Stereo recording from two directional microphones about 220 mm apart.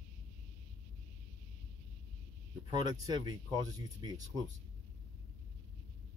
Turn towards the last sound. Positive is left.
turn(degrees=-15)  # may be behind; listen again after turning